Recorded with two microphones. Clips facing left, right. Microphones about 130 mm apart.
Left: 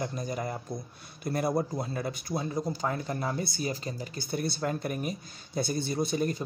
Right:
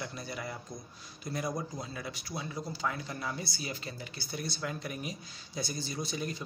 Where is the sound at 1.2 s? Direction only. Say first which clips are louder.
Left 7 dB; 55° left (ahead or behind).